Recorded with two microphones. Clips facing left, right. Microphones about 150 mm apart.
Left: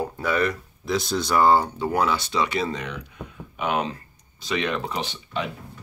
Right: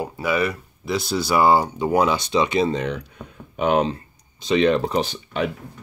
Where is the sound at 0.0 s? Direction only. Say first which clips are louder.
Right 1 dB; 5° right (ahead or behind); by 5.5 s 50° right (ahead or behind).